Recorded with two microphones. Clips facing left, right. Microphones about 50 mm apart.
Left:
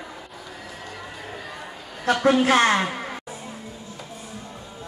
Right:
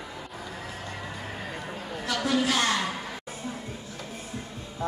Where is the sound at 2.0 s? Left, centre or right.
Left.